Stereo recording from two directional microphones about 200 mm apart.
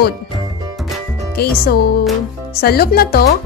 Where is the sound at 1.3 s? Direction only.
50° left (ahead or behind).